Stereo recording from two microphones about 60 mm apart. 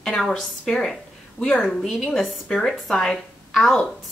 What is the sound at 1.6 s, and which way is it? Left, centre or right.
A woman's voice, centre.